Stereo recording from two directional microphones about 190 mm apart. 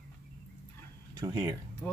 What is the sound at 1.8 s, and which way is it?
Speech, 15° left (ahead or behind).